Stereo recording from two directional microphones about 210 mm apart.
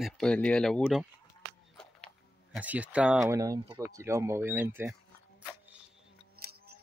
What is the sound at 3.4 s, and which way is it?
Speech, 15° right (ahead or behind).